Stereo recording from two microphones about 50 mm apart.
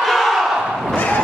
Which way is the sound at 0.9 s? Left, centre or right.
Left.